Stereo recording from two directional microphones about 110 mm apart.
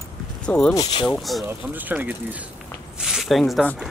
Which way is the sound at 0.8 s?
40° left (ahead or behind).